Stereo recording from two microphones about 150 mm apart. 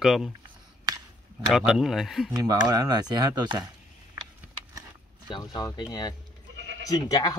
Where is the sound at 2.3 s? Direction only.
25° right (ahead or behind).